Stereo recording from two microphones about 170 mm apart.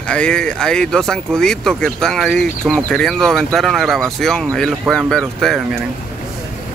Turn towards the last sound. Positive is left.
turn(degrees=0)  # may be behind; listen again after turning